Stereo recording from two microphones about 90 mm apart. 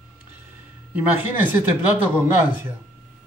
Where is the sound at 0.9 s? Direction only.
20° right (ahead or behind).